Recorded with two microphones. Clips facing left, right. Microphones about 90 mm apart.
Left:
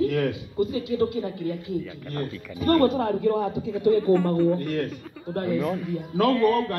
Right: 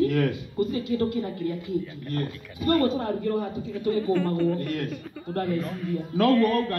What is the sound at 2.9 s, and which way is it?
A man's voice, 90° left.